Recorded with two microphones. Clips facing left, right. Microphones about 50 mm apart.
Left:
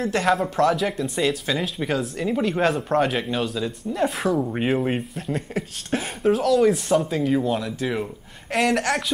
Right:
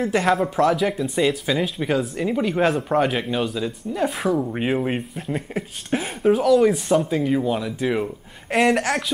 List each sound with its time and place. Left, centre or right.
0.0 s speech: centre
8.5 s speech: right
8.7 s speech: centre